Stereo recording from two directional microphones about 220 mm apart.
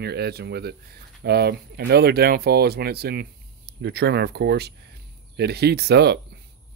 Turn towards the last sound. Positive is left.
turn(degrees=-50)  # may be behind; listen again after turning